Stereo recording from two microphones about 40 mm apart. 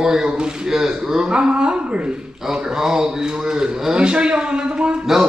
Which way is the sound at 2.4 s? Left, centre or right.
Centre.